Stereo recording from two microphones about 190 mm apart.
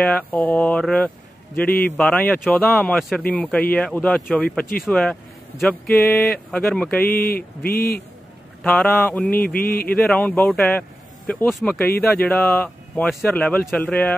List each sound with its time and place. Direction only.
0.0 s speech: 5° left (ahead or behind)
7.2 s mantra: 50° left (ahead or behind)
8.6 s speech: centre (ahead or behind)
9.3 s mantra: 50° left (ahead or behind)
9.8 s a man's voice: 5° left (ahead or behind)